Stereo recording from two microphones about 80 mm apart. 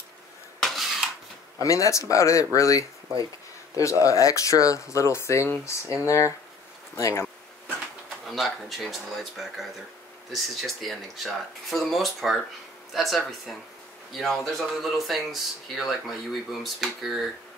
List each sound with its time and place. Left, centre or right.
0.6 s a sound: centre
1.6 s speech: left
4.0 s speech: left
8.3 s speech: centre